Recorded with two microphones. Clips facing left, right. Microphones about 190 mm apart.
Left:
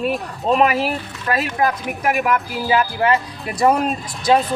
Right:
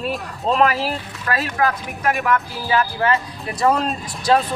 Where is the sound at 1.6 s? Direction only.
15° left (ahead or behind).